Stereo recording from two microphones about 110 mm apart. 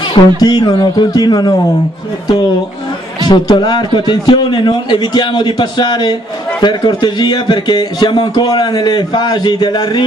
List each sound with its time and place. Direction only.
0.4 s a man's voice: 35° left (ahead or behind)
3.3 s a man's voice: 40° left (ahead or behind)